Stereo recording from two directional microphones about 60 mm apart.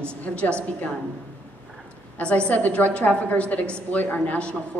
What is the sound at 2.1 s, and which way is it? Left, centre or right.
A woman's voice, left.